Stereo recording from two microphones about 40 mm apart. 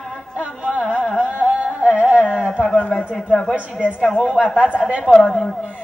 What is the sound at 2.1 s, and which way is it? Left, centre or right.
Speech, right.